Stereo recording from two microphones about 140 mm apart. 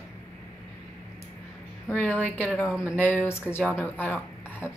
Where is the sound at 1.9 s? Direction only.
10° left (ahead or behind).